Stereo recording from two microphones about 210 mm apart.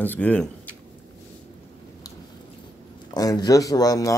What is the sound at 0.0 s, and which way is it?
Speech, 10° left (ahead or behind).